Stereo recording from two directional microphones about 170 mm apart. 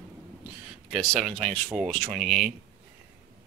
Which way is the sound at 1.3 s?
5° left (ahead or behind).